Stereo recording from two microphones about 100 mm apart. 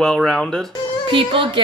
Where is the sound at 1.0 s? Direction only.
60° right (ahead or behind).